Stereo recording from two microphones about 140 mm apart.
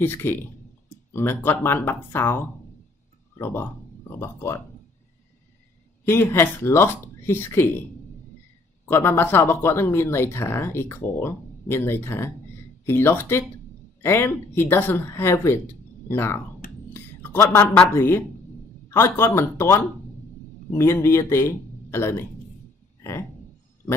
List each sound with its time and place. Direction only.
0.0 s speech: 15° left (ahead or behind)
6.0 s speech: 15° left (ahead or behind)
8.8 s speech: 15° left (ahead or behind)
16.9 s a sound: 15° left (ahead or behind)
17.9 s speech: 15° left (ahead or behind)